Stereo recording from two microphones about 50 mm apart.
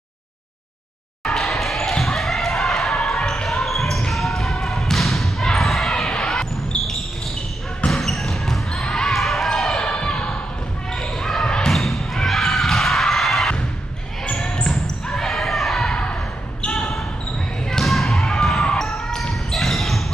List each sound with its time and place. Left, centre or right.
1.2 s basketball bounce: centre
7.9 s basketball bounce: centre
9.8 s basketball bounce: centre
11.7 s basketball bounce: centre
14.2 s basketball bounce: left; by 15.9 s centre
15.9 s a sound: left
16.6 s basketball bounce: centre
17.6 s basketball bounce: centre